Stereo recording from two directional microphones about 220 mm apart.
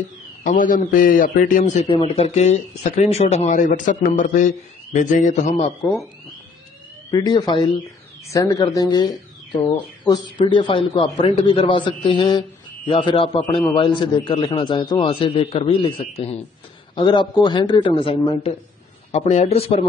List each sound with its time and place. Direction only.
0.4 s speech: 35° left (ahead or behind)
7.1 s a man's voice: 15° left (ahead or behind)
10.3 s a man's voice: 25° left (ahead or behind)